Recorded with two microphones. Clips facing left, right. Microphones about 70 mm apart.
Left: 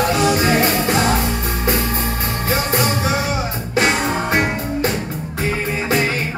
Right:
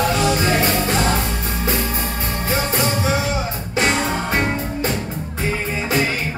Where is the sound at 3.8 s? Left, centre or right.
Centre.